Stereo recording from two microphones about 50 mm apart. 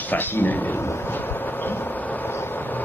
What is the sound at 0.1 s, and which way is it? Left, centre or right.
Speech, left.